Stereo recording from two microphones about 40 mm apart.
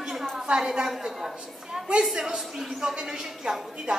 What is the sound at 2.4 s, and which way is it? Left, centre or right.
Speech, centre.